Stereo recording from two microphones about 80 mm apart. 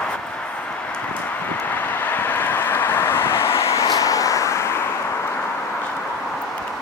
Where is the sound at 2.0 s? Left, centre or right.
Left.